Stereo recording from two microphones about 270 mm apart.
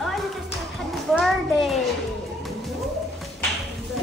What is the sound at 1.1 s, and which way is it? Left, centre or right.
Speech, centre.